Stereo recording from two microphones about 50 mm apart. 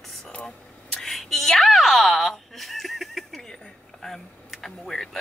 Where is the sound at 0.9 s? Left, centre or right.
Centre.